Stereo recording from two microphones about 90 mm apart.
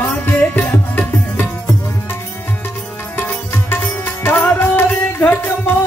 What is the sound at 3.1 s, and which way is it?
Sitar, 20° left (ahead or behind).